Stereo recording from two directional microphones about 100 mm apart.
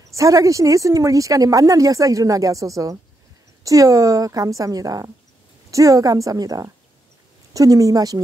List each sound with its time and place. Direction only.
0.1 s speech: 35° right (ahead or behind)